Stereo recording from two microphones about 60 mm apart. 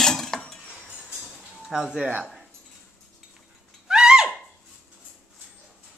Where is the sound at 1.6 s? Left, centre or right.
Centre.